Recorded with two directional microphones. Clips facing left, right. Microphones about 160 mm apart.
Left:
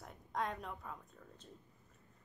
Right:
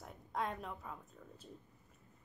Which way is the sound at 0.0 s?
Centre (ahead or behind).